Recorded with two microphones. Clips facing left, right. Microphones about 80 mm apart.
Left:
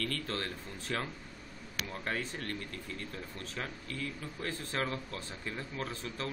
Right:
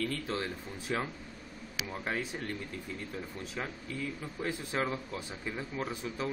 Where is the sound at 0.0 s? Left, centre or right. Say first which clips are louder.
Right 2 dB; centre.